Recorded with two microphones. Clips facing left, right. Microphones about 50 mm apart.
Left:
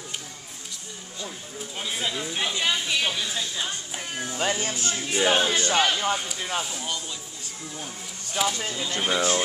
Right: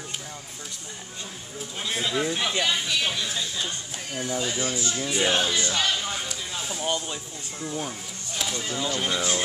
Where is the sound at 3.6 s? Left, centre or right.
Left.